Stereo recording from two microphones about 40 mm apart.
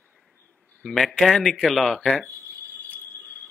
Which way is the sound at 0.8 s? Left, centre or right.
Centre.